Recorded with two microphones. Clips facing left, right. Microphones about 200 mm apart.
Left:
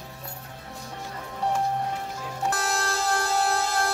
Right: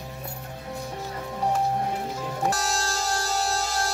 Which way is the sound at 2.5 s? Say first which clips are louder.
Left 1 dB; 55° left (ahead or behind).